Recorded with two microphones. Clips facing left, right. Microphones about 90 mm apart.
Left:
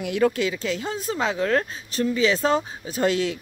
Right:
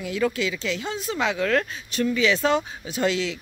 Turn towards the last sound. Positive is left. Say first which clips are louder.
# left 2 dB
turn(degrees=45)  # may be behind; listen again after turning